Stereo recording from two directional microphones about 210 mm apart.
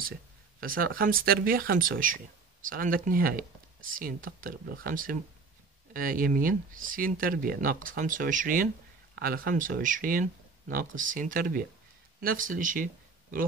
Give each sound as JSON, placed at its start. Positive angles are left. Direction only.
{"t": 0.6, "sound": "speech", "side_deg": -45}